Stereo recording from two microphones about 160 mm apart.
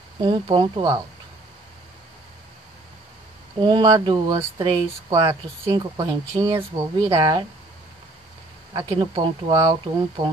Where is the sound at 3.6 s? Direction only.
30° right (ahead or behind).